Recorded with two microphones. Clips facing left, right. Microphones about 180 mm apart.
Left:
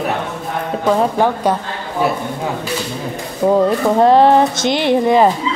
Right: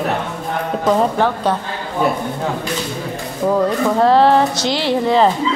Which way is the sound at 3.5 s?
20° left (ahead or behind).